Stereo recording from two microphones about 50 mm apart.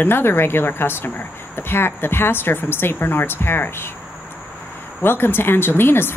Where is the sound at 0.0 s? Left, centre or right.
Left.